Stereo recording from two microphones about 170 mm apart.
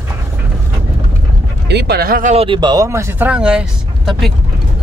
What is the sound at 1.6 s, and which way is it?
Speech, 75° right (ahead or behind).